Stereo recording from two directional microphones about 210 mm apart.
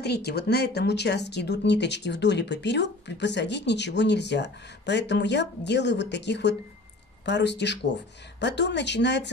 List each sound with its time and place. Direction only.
0.0 s speech: 50° left (ahead or behind)